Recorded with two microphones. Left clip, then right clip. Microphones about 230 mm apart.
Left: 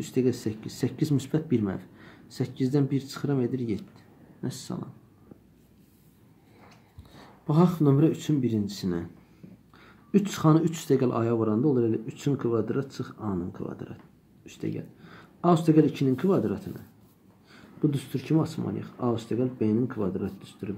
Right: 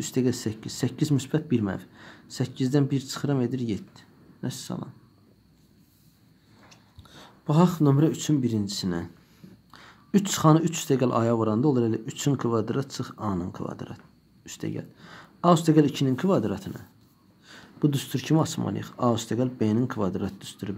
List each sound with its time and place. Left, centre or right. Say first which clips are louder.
0.0 s speech: even; right
6.7 s speech: right 2 dB; right